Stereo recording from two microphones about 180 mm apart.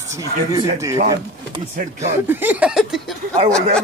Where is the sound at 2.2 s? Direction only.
10° right (ahead or behind).